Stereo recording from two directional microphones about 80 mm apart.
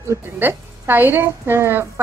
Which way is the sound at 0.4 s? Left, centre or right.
Right.